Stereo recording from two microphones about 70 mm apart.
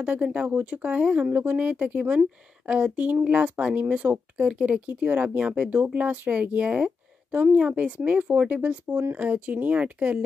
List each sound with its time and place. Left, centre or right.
0.0 s speech: centre
3.8 s speech: right